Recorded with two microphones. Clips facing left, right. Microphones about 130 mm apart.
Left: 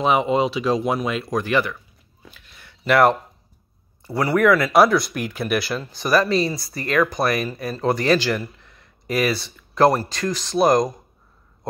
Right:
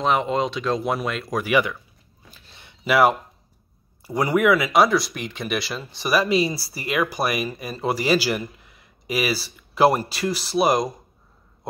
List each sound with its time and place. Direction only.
0.0 s speech: 5° left (ahead or behind)
1.4 s speech: 10° right (ahead or behind)
2.3 s a sound: 35° right (ahead or behind)
2.9 s speech: 5° right (ahead or behind)
4.0 s speech: 15° right (ahead or behind)